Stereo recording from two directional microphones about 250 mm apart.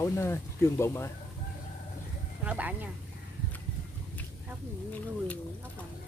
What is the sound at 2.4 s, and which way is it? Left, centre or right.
Speech, centre.